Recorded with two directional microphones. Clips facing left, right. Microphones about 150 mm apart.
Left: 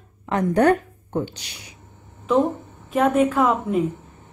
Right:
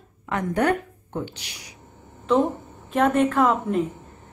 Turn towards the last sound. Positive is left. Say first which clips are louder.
# left 1 dB
turn(degrees=5)  # may be behind; listen again after turning